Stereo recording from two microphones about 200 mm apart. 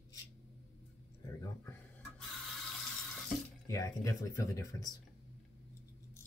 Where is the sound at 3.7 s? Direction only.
15° left (ahead or behind).